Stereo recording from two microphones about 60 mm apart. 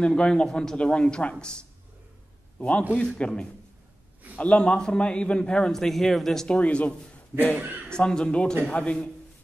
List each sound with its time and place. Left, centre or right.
0.0 s a man's voice: centre
2.9 s a man's voice: centre
6.6 s speech: left
7.6 s a man's voice: right
7.9 s a man's voice: centre